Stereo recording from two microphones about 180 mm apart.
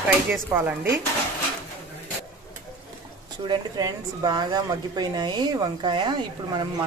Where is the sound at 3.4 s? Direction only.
25° right (ahead or behind).